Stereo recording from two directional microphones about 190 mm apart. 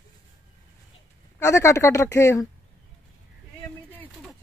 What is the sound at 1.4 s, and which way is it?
Speech, 15° left (ahead or behind).